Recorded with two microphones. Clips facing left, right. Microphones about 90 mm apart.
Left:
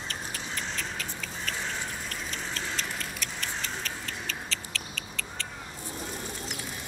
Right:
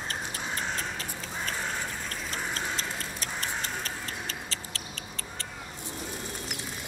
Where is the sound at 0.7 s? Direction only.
35° right (ahead or behind).